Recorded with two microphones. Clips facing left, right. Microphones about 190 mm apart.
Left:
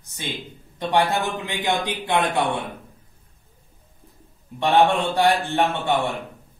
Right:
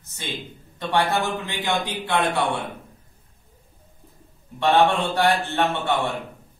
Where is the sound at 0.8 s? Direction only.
15° left (ahead or behind).